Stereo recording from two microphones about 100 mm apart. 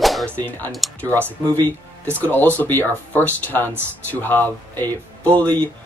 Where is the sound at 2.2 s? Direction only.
15° left (ahead or behind).